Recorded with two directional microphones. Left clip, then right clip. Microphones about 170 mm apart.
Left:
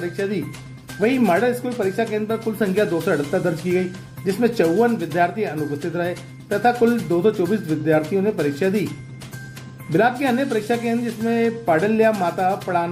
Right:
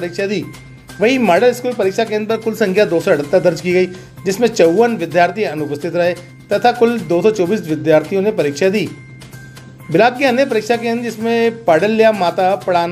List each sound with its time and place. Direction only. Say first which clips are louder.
0.0 s speech: right 5 dB; 20° right (ahead or behind)
9.9 s speech: right 7 dB; 25° right (ahead or behind)